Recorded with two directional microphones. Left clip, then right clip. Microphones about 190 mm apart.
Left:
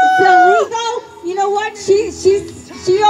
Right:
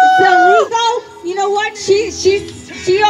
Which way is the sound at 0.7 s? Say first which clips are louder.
Right 5 dB; 65° left (ahead or behind).